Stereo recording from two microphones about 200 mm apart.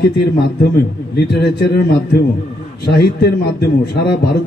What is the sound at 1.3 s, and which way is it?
Speech, 55° left (ahead or behind).